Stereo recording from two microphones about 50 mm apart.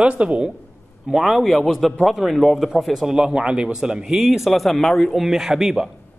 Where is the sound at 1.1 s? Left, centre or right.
Centre.